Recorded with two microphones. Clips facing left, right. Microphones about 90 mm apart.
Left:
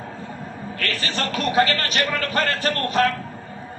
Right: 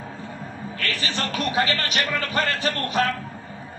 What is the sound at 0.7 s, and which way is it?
A man's voice, 45° left (ahead or behind).